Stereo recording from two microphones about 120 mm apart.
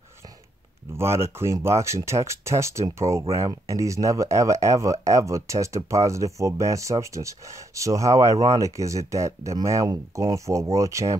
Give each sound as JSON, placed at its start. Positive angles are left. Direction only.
{"t": 0.9, "sound": "speech", "side_deg": -20}